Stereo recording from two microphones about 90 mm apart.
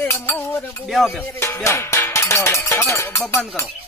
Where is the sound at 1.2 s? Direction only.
25° left (ahead or behind).